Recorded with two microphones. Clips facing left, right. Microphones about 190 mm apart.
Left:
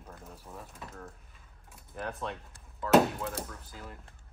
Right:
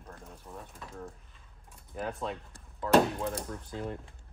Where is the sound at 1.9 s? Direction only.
5° right (ahead or behind).